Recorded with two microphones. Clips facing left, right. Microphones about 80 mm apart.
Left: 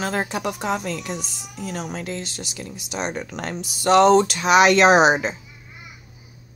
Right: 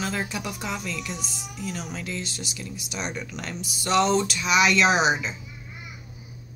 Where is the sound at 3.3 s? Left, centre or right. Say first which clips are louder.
Left 5 dB; left.